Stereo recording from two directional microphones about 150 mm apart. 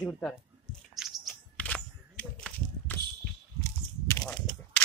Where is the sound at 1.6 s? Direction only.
10° left (ahead or behind).